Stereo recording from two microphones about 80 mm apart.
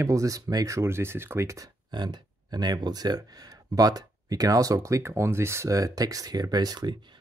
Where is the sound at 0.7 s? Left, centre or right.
Right.